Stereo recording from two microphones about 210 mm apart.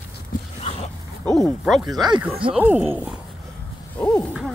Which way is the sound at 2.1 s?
25° right (ahead or behind).